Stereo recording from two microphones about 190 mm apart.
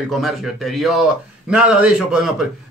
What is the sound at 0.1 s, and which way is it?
A man's voice, centre (ahead or behind).